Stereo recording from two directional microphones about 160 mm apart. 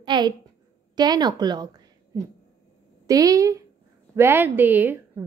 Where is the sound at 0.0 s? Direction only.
30° right (ahead or behind).